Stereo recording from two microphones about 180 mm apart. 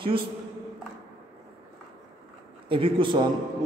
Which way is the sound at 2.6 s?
30° right (ahead or behind).